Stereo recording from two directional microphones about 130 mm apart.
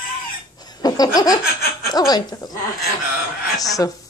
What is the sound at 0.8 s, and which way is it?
Laughter, 30° left (ahead or behind).